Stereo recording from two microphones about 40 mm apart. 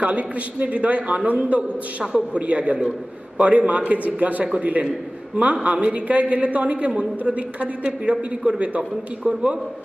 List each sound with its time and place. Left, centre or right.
0.0 s a man's voice: right